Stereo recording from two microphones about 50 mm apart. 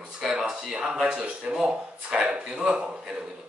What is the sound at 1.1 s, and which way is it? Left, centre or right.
Speech, right.